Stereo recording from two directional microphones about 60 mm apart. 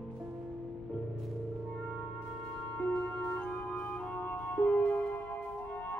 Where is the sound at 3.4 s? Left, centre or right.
Centre.